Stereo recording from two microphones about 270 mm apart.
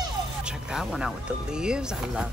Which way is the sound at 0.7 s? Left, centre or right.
Centre.